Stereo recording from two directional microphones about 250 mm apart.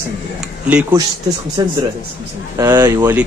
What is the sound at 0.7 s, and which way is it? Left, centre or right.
Speech, centre.